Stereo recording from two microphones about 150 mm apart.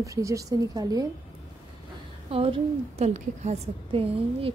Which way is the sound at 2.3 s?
40° right (ahead or behind).